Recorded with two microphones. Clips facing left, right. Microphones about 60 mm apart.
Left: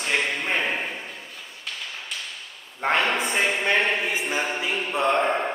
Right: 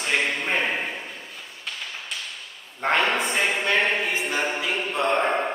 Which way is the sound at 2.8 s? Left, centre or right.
Centre.